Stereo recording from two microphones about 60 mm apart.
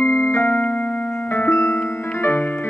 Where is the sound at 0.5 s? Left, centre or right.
Left.